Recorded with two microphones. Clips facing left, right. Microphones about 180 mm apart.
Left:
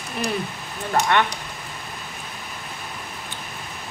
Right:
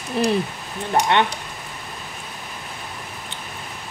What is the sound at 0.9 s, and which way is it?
Speech, 20° right (ahead or behind).